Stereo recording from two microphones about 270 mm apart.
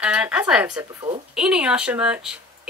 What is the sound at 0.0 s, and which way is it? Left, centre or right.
Speech, centre.